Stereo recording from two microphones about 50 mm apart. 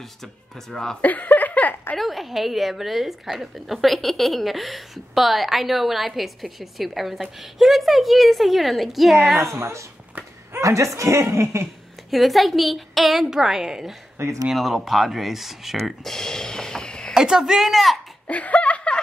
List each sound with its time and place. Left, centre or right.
0.2 s speech: centre
1.0 s a sound: left
2.0 s a woman's voice: centre
9.4 s a woman's voice: right
10.6 s speech: right
12.1 s a woman's voice: centre
14.1 s speech: right
14.5 s a woman's voice: centre
15.8 s speech: centre
17.1 s speech: centre
18.2 s laughter: left